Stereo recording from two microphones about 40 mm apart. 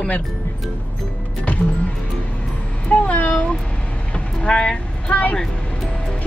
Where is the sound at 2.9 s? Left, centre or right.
Left.